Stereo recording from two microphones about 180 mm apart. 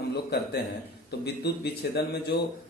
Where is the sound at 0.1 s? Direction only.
65° left (ahead or behind).